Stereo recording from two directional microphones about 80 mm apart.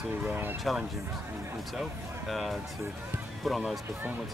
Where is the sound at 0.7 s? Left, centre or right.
Centre.